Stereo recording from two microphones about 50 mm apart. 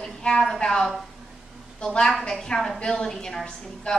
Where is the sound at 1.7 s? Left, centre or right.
Centre.